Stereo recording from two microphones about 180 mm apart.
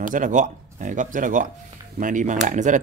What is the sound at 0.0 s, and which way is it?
Speech, 45° right (ahead or behind).